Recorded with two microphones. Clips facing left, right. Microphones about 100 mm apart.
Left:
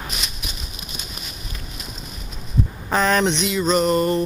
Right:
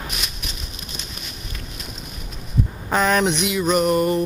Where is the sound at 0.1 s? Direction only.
Centre (ahead or behind).